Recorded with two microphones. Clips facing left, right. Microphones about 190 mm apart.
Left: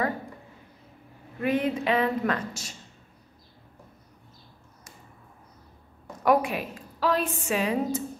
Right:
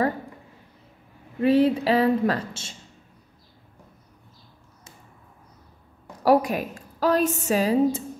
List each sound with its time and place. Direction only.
1.4 s a woman's voice: 30° right (ahead or behind)
6.2 s a woman's voice: 35° right (ahead or behind)